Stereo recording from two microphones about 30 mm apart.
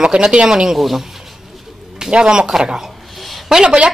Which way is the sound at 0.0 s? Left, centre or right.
Right.